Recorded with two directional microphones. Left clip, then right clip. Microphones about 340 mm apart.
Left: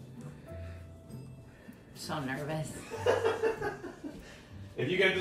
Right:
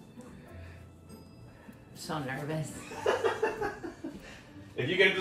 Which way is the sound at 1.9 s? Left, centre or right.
Centre.